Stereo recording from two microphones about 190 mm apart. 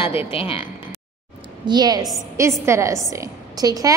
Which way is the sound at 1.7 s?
20° right (ahead or behind).